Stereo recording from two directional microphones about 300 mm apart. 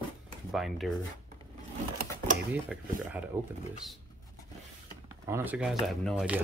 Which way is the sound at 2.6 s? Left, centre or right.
Centre.